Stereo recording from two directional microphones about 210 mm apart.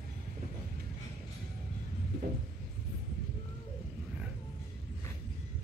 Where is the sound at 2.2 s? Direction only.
45° right (ahead or behind).